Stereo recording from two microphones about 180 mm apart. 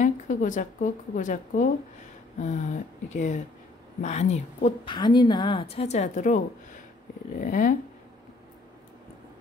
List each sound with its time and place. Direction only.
0.0 s a woman's voice: 45° left (ahead or behind)
4.8 s a woman's voice: 25° left (ahead or behind); by 7.7 s 50° left (ahead or behind)